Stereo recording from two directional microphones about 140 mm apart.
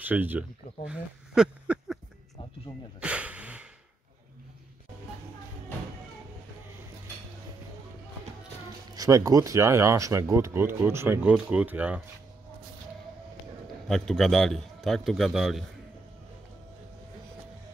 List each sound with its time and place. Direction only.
0.0 s speech: 15° right (ahead or behind)
3.0 s a sound: 10° right (ahead or behind)
8.9 s speech: 25° right (ahead or behind)
13.8 s a man's voice: 5° left (ahead or behind)